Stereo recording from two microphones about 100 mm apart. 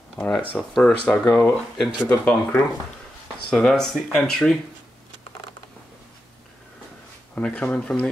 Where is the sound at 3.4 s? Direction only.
5° left (ahead or behind).